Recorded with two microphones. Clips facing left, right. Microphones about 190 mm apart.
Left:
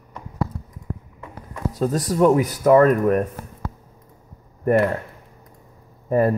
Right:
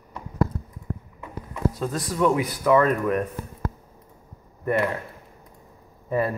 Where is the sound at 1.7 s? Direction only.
40° left (ahead or behind).